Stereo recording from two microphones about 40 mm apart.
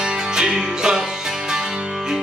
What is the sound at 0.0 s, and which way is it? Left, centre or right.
Music, centre.